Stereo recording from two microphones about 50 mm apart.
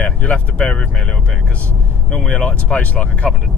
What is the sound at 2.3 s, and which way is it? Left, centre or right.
Speech, left.